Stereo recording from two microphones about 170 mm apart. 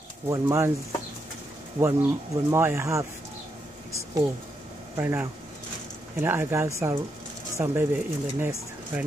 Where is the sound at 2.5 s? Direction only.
15° right (ahead or behind).